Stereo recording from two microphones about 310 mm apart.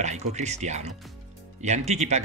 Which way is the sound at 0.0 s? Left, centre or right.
Right.